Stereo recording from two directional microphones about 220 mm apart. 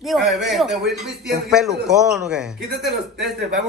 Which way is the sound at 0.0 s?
Centre (ahead or behind).